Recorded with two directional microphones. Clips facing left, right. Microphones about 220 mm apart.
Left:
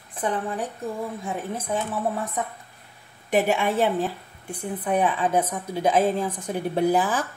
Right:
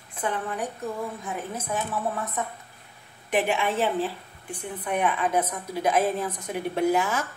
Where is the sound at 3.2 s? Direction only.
40° left (ahead or behind).